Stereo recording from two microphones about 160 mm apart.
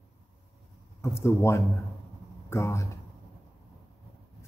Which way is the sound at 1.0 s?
15° left (ahead or behind).